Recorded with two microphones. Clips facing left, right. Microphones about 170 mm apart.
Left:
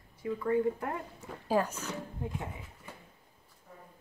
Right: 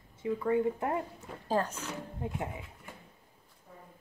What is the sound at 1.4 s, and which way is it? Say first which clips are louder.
Speech: left 1 dB; 10° left (ahead or behind).